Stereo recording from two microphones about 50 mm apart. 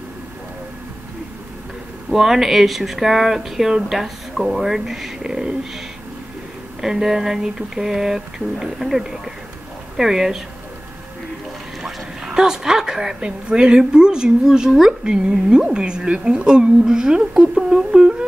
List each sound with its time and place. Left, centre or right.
2.0 s a woman's voice: centre
6.8 s a woman's voice: centre
11.8 s a woman's voice: centre